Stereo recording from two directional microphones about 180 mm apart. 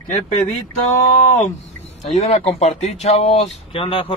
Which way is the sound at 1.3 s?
40° left (ahead or behind).